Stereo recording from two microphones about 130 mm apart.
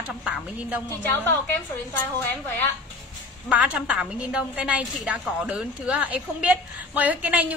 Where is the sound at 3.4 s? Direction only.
10° right (ahead or behind).